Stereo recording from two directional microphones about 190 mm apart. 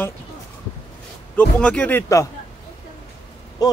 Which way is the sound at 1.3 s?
5° left (ahead or behind).